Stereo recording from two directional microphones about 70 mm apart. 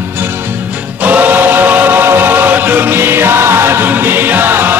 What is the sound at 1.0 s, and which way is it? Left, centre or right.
Chant, right.